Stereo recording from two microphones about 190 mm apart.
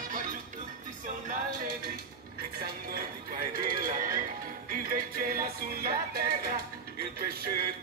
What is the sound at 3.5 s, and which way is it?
Music, 50° right (ahead or behind).